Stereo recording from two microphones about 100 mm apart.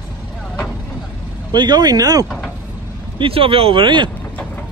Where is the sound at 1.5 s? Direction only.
45° right (ahead or behind).